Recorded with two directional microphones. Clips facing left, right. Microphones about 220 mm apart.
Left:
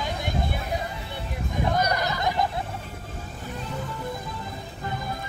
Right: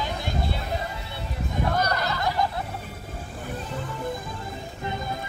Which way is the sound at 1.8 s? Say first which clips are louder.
Left 1 dB; 15° left (ahead or behind).